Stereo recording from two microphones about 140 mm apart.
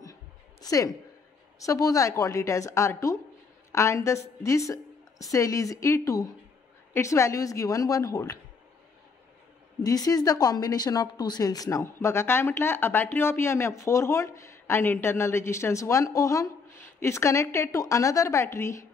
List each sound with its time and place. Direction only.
0.0 s a sound: 25° left (ahead or behind)
1.6 s speech: 25° left (ahead or behind)
9.8 s speech: 25° left (ahead or behind)